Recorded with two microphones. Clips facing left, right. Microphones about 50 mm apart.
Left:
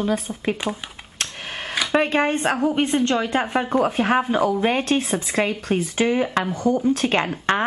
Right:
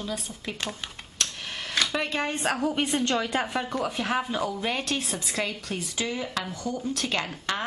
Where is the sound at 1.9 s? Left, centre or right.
Left.